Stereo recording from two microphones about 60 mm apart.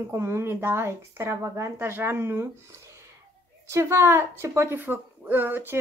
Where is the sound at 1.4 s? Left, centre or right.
Right.